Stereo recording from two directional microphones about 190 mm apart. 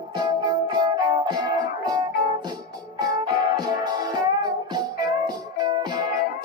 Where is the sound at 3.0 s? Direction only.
20° right (ahead or behind).